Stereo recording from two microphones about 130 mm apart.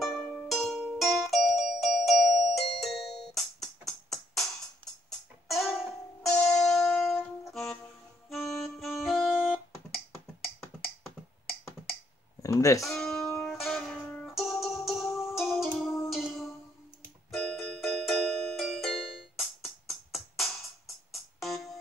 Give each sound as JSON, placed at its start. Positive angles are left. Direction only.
{"t": 0.1, "sound": "music", "side_deg": 0}
{"t": 6.2, "sound": "music", "side_deg": 5}
{"t": 8.3, "sound": "music", "side_deg": 0}
{"t": 12.4, "sound": "a sound", "side_deg": 25}
{"t": 12.8, "sound": "music", "side_deg": 5}